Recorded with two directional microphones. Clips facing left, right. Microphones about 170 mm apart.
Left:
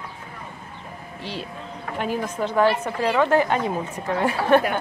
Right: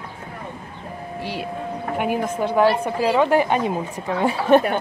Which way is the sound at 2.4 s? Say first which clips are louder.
Right 2 dB; 10° right (ahead or behind).